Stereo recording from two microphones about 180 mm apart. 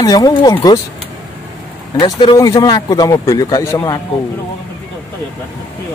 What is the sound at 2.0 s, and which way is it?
Speech, 25° left (ahead or behind).